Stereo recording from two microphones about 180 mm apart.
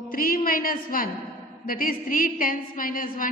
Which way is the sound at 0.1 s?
50° left (ahead or behind).